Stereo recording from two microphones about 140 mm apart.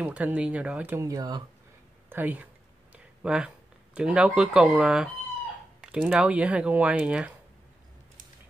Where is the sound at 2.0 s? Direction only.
15° right (ahead or behind).